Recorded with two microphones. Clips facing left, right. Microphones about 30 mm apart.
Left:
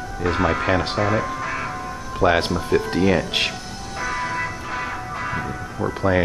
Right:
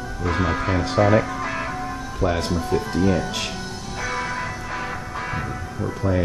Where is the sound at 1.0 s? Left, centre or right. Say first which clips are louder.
Right 3 dB; centre.